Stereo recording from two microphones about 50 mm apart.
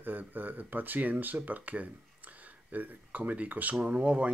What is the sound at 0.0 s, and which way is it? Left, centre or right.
Speech, right.